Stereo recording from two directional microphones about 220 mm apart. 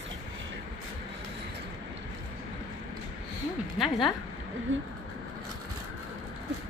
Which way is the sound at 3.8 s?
Centre (ahead or behind).